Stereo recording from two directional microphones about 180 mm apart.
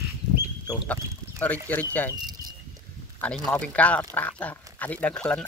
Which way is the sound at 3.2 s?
5° left (ahead or behind).